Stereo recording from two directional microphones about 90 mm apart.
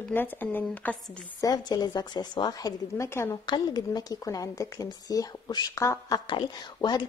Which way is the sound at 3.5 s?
50° left (ahead or behind).